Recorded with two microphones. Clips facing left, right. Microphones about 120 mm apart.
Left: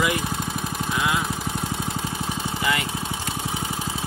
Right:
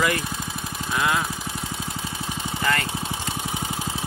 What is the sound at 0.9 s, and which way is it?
Speech, 5° left (ahead or behind).